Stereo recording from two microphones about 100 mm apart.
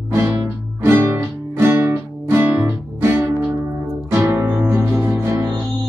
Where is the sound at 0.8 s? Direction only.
25° right (ahead or behind).